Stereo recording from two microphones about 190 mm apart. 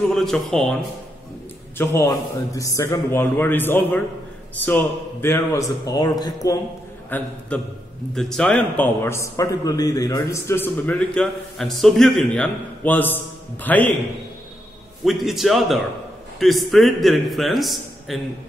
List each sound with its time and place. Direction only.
0.1 s a man's voice: centre (ahead or behind)
1.8 s a man's voice: 15° left (ahead or behind)
7.1 s a man's voice: 10° left (ahead or behind)
15.0 s a man's voice: centre (ahead or behind)